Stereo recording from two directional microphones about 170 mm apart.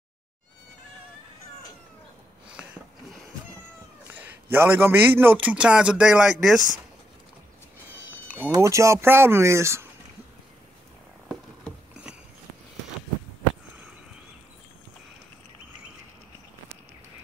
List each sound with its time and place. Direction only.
2.5 s a sound: 5° right (ahead or behind)
4.1 s a man's voice: 10° right (ahead or behind)
8.5 s a man's voice: 15° right (ahead or behind)